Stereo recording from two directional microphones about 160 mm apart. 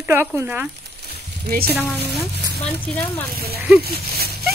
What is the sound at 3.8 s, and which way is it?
Speech, 75° right (ahead or behind).